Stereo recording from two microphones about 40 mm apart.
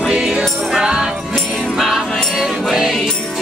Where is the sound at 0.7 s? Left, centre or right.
Centre.